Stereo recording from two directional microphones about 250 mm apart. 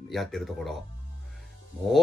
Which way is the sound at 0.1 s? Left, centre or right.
Centre.